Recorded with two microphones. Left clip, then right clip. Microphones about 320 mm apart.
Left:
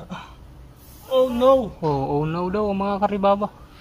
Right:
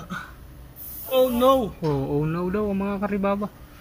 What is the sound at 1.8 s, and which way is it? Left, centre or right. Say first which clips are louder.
Speech: left 3 dB; left.